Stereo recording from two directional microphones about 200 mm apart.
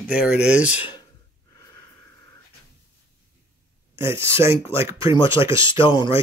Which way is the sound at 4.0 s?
10° right (ahead or behind).